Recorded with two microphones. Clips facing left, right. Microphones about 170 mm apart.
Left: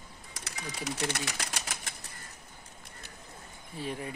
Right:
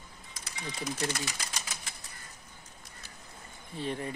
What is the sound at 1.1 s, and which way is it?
Speech, 70° left (ahead or behind).